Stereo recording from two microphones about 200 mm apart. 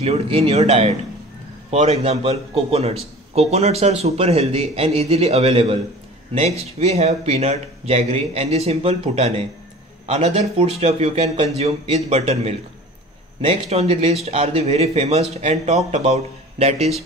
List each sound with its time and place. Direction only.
0.0 s speech: 30° right (ahead or behind)